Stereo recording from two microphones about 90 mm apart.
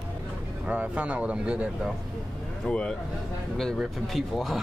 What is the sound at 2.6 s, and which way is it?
Speech, 10° left (ahead or behind).